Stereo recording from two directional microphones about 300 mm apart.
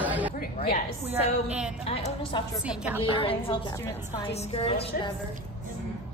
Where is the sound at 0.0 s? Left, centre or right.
Centre.